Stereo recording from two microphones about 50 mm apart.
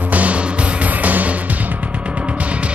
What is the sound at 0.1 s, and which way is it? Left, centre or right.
Music, right.